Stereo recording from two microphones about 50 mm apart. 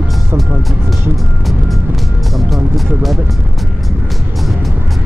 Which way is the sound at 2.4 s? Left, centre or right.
Centre.